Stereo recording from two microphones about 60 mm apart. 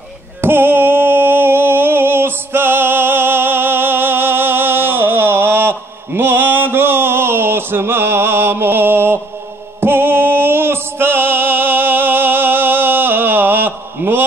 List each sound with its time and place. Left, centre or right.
0.4 s music: right